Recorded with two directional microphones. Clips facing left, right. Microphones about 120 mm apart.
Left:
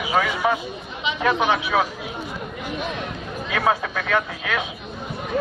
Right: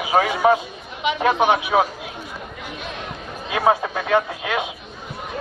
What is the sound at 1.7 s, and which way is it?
Speech, 25° right (ahead or behind).